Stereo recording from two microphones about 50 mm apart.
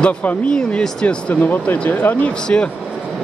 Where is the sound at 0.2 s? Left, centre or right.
Left.